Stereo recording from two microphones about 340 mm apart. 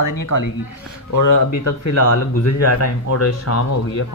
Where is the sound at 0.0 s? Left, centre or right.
Left.